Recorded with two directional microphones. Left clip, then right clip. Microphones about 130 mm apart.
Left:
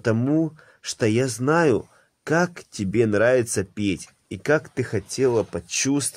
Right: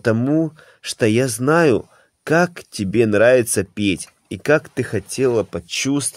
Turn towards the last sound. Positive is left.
turn(degrees=-25)  # may be behind; listen again after turning